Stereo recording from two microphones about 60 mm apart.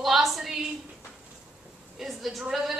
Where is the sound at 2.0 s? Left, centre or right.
Centre.